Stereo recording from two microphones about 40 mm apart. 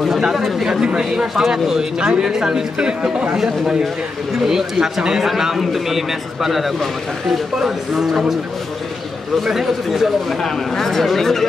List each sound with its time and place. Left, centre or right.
0.4 s a man's voice: centre
4.5 s a man's voice: centre
9.5 s a man's voice: centre
10.4 s speech: centre